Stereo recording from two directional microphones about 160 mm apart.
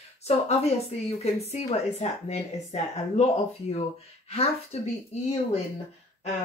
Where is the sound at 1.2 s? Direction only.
40° left (ahead or behind).